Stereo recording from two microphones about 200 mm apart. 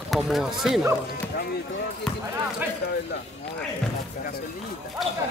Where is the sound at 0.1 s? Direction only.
Centre (ahead or behind).